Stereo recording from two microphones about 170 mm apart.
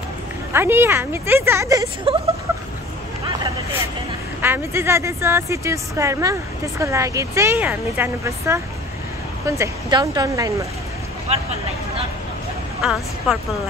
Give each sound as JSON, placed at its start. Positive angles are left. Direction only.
{"t": 0.5, "sound": "speech", "side_deg": -15}
{"t": 4.4, "sound": "speech", "side_deg": -15}
{"t": 11.3, "sound": "speech", "side_deg": -40}
{"t": 12.8, "sound": "a woman's voice", "side_deg": 0}